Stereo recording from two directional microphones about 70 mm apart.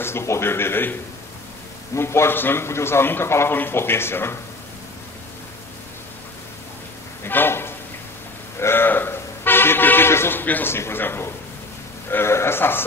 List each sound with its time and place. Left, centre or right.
0.0 s speech: left
2.0 s speech: left
7.2 s a sound: left
10.7 s speech: left